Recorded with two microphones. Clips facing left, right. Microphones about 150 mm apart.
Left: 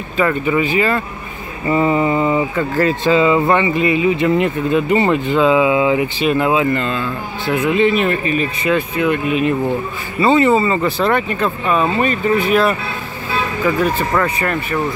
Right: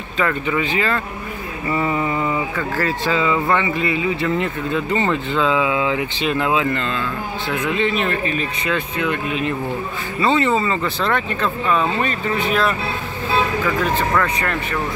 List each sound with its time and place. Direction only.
0.2 s speech: 5° left (ahead or behind)
1.7 s speech: 25° left (ahead or behind); by 12.7 s 10° left (ahead or behind)
14.2 s speech: 10° left (ahead or behind)